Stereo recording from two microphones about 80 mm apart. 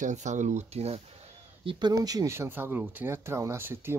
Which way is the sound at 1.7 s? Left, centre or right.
Right.